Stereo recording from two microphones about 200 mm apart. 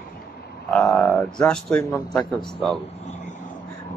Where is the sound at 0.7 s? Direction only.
5° left (ahead or behind).